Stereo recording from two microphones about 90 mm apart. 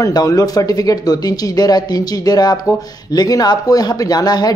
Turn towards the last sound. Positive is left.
turn(degrees=50)  # may be behind; listen again after turning